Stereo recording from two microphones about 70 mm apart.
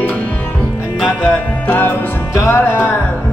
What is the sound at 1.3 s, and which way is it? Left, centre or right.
Music, left.